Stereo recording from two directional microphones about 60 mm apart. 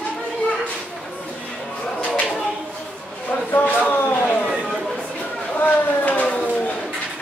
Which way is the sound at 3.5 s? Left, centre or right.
Left.